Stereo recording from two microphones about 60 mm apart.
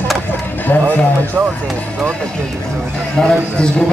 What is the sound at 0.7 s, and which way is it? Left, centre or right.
Speech, left.